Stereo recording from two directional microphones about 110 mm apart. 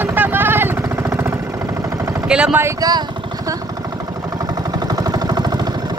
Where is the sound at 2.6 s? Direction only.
35° right (ahead or behind).